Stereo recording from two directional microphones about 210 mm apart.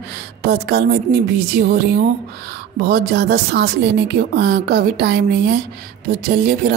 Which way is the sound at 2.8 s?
50° right (ahead or behind).